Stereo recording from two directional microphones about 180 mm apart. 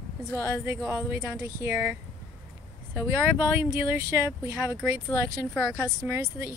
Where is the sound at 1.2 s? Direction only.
15° right (ahead or behind).